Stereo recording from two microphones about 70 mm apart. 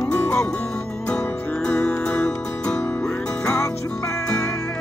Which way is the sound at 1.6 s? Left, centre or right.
Centre.